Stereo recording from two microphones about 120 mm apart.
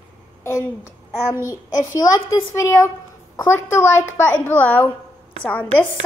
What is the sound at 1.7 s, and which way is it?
A woman's voice, 30° left (ahead or behind).